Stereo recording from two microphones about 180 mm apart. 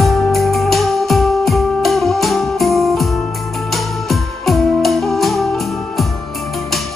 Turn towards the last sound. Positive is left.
turn(degrees=0)  # may be behind; listen again after turning